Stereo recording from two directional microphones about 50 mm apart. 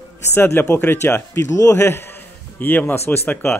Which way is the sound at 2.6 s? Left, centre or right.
Left.